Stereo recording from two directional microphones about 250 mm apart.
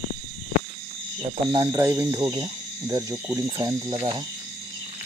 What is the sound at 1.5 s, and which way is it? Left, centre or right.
Speech, centre.